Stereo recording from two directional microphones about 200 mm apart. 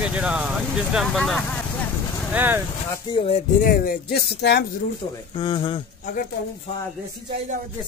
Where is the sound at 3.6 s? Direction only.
45° left (ahead or behind).